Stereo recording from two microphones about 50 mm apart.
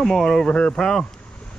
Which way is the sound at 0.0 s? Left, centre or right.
Centre.